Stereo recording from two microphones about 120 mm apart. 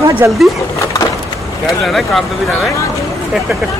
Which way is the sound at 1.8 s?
Centre (ahead or behind).